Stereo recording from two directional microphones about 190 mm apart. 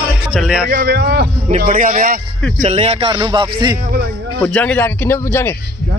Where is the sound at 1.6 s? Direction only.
45° right (ahead or behind).